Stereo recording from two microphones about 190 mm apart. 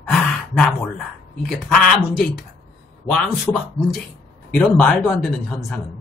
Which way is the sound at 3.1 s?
Centre (ahead or behind).